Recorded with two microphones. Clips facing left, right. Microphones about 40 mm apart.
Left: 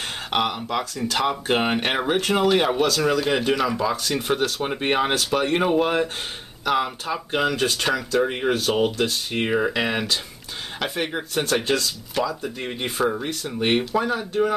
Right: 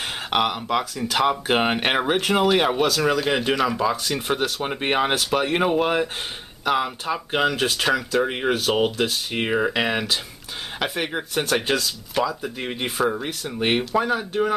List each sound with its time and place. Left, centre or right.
0.3 s speech: centre